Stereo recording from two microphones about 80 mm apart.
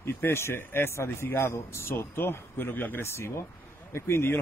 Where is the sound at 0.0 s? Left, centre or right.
Left.